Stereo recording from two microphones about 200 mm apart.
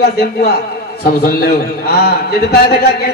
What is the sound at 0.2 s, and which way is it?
A woman's voice, 50° left (ahead or behind).